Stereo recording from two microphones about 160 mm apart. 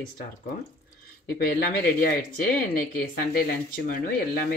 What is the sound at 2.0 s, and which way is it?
Speech, 65° left (ahead or behind).